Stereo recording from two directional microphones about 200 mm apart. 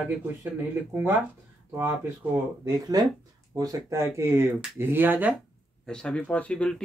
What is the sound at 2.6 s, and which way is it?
Speech, 20° right (ahead or behind).